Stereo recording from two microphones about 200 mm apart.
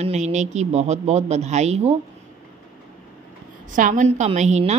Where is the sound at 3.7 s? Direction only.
40° right (ahead or behind).